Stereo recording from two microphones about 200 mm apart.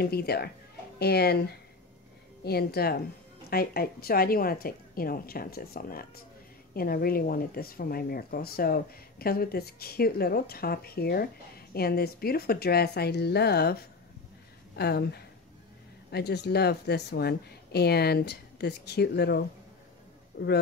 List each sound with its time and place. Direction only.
0.0 s speech: 50° left (ahead or behind)
14.8 s speech: 55° left (ahead or behind)